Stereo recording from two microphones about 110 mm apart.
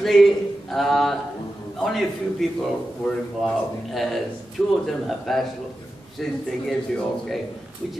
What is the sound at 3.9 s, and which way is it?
Speech, centre (ahead or behind).